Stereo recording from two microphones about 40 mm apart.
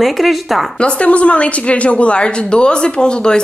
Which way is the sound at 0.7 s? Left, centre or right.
Left.